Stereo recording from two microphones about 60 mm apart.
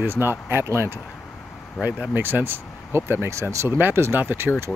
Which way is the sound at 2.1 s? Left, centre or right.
Right.